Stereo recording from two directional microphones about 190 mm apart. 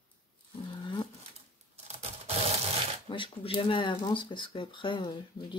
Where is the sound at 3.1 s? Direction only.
25° left (ahead or behind).